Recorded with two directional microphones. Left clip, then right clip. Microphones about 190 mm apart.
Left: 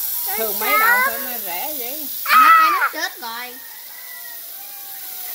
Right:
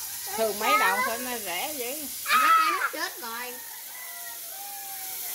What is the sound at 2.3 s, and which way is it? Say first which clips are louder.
Speech: left 10 dB; 55° left (ahead or behind).